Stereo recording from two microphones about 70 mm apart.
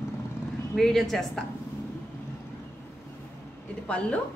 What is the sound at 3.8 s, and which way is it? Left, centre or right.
Speech, centre.